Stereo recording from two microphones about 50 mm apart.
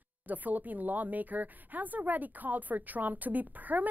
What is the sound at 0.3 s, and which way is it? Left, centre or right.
A woman's voice, right.